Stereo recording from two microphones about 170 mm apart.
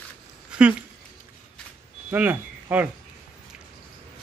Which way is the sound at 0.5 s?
5° right (ahead or behind).